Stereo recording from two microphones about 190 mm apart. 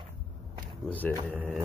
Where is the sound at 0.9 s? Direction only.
10° left (ahead or behind).